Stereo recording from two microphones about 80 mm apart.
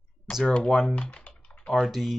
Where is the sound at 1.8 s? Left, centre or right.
Centre.